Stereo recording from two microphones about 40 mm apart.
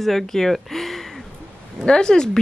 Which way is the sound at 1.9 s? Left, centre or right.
Centre.